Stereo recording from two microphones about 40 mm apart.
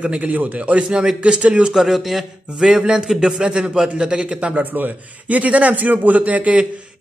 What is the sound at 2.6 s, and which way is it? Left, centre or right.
A man's voice, centre.